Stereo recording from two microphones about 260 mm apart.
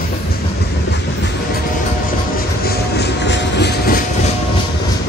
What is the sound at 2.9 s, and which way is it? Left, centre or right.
Train, left.